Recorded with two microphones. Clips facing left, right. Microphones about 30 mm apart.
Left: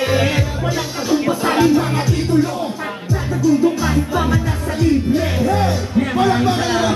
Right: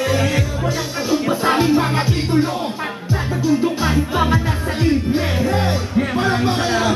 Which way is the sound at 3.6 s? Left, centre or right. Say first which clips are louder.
Left 2 dB; right.